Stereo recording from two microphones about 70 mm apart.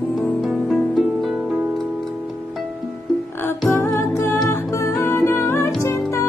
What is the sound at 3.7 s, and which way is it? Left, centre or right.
Music, left.